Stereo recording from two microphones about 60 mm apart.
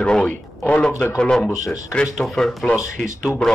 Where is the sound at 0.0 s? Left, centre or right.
Centre.